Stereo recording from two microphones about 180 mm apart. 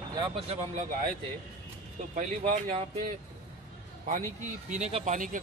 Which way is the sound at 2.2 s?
40° right (ahead or behind).